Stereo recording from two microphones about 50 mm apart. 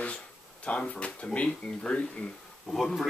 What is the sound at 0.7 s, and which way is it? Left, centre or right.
Speech, left.